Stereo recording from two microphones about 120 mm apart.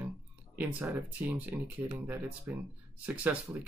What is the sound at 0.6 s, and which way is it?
Speech, 15° right (ahead or behind).